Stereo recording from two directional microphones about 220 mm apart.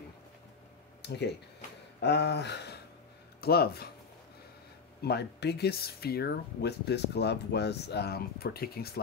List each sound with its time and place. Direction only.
1.0 s a sound: 50° left (ahead or behind)
2.0 s speech: 50° left (ahead or behind)
5.0 s speech: 50° left (ahead or behind)